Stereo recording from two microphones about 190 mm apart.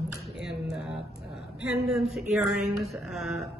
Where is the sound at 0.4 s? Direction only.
Centre (ahead or behind).